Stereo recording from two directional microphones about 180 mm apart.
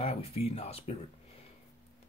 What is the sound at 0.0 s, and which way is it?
Speech, 35° left (ahead or behind).